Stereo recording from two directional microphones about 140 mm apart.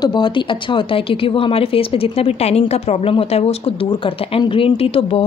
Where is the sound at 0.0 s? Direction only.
35° left (ahead or behind).